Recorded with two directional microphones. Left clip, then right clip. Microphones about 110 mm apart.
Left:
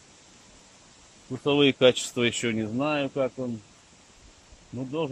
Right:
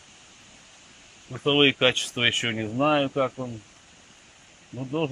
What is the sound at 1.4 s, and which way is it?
A man's voice, 25° left (ahead or behind).